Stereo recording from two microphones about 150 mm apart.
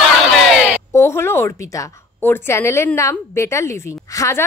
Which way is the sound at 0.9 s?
15° left (ahead or behind).